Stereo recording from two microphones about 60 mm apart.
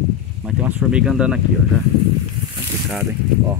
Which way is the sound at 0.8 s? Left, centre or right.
Centre.